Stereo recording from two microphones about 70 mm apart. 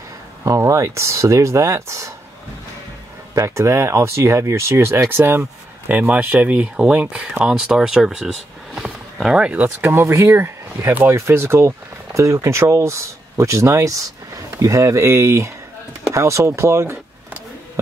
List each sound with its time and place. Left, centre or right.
0.4 s speech: right
3.3 s speech: right
5.9 s speech: right